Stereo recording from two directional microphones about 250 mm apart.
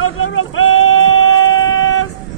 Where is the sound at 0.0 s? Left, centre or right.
Left.